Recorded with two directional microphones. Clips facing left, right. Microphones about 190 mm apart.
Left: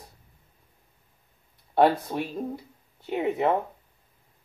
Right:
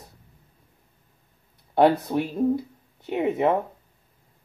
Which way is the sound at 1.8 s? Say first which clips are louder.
Right 2 dB; centre (ahead or behind).